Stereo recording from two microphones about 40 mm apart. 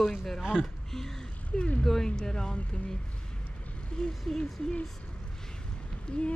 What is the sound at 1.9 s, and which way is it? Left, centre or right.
Speech, centre.